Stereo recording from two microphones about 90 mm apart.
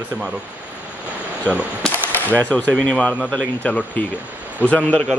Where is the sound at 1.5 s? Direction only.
20° left (ahead or behind).